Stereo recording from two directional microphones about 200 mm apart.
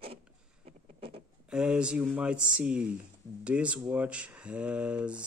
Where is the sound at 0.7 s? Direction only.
30° right (ahead or behind).